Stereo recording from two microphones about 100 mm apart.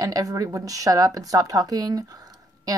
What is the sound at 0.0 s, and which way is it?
A woman's voice, 35° right (ahead or behind).